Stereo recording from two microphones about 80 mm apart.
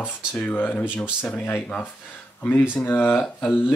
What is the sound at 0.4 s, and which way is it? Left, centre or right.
Speech, left.